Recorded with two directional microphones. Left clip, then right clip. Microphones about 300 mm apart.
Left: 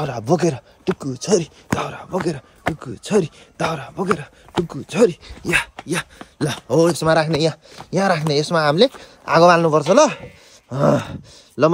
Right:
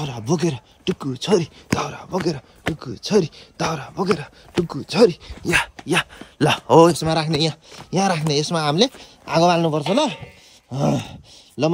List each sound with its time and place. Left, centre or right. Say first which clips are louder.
0.0 s speech: left 4 dB; centre
7.0 s speech: left 6 dB; centre
7.2 s speech: left 2 dB; centre